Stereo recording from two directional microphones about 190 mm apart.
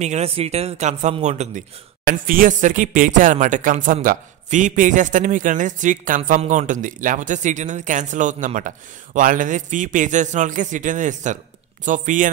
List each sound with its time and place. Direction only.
0.0 s speech: 35° right (ahead or behind)